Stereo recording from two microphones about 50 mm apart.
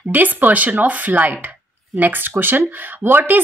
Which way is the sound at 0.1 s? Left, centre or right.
Right.